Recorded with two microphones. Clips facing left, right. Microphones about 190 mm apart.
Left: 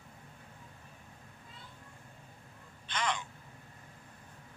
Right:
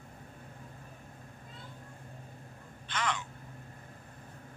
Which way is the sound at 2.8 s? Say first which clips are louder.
Even; 25° left (ahead or behind).